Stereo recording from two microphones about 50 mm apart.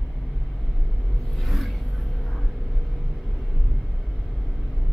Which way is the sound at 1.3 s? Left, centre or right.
Centre.